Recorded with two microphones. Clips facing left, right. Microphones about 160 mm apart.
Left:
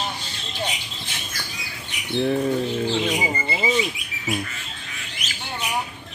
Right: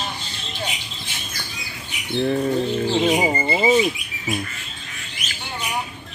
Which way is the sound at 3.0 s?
45° right (ahead or behind).